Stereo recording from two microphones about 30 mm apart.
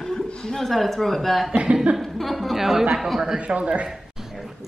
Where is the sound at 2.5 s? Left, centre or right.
Centre.